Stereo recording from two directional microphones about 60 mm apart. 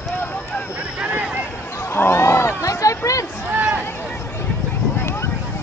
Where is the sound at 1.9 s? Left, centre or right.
Left.